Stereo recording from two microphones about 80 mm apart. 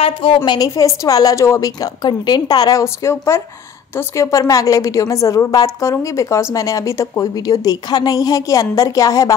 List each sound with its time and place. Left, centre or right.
0.6 s a woman's voice: left
2.0 s a woman's voice: left
2.8 s a woman's voice: left
7.3 s a woman's voice: left